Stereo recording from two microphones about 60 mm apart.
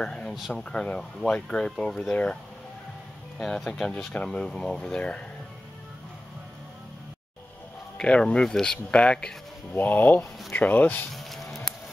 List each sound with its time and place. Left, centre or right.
0.0 s speech: centre
0.3 s speech: centre
3.3 s speech: centre
8.0 s speech: centre
9.8 s speech: left
11.1 s a sound: centre